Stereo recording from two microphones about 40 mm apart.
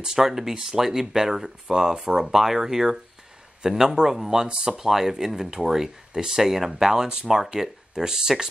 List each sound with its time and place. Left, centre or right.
0.0 s speech: centre